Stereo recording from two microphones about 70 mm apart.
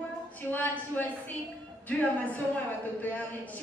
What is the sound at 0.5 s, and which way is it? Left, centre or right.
A woman's voice, left.